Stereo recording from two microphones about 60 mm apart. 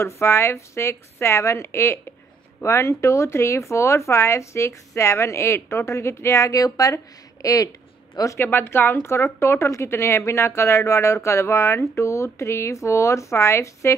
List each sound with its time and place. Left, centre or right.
0.0 s a woman's voice: left
8.4 s a woman's voice: left